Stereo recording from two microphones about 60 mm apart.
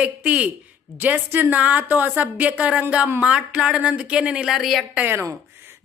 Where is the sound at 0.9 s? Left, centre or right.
Right; by 4.5 s centre.